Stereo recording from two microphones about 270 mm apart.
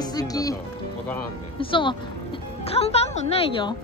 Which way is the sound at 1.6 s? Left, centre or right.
Centre.